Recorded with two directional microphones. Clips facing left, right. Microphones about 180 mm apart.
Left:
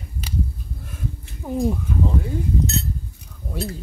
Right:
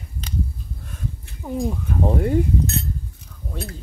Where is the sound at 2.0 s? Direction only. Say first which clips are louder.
Right 7 dB; 65° right (ahead or behind).